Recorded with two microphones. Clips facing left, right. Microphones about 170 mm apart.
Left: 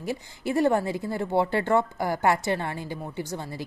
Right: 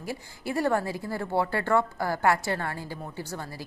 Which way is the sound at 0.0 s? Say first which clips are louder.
Left 4 dB; 20° left (ahead or behind).